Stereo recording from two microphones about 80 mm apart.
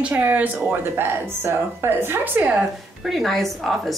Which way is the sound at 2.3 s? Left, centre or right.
Centre.